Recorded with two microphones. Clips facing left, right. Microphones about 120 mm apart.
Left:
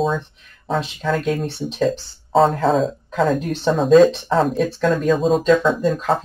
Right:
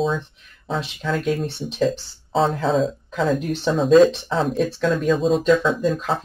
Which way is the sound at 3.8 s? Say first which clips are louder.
Left 1 dB; centre (ahead or behind).